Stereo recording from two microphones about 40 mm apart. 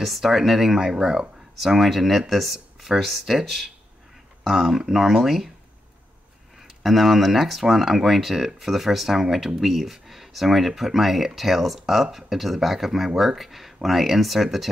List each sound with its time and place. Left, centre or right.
0.0 s speech: centre
1.6 s speech: centre
6.8 s speech: centre